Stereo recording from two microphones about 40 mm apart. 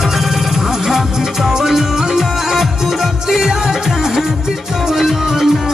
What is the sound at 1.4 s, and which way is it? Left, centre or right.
Music, centre.